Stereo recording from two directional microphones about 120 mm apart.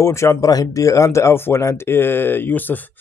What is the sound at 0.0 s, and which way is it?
Speech, 25° left (ahead or behind).